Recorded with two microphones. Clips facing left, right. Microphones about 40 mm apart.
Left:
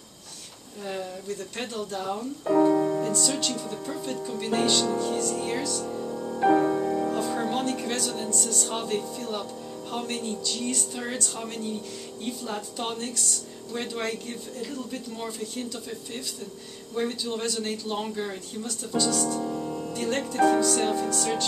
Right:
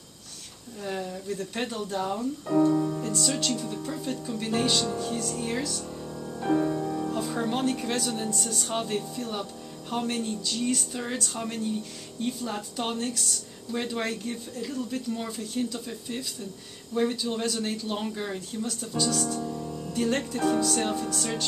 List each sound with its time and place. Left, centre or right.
0.8 s speech: centre
2.4 s speech: left
2.7 s music: left
3.0 s speech: centre
5.9 s music: centre
6.4 s music: left
7.1 s speech: centre
19.4 s music: left
19.9 s speech: centre